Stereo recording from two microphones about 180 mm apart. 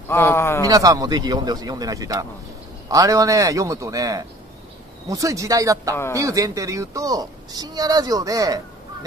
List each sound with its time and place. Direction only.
0.1 s a man's voice: 15° left (ahead or behind)
0.6 s a woman's voice: 20° right (ahead or behind)